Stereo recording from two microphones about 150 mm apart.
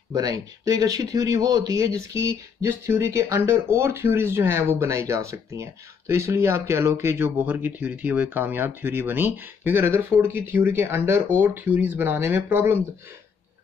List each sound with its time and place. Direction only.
0.1 s speech: 25° right (ahead or behind)